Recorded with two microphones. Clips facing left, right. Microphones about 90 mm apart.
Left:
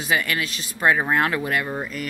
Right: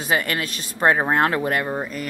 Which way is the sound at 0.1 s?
40° right (ahead or behind).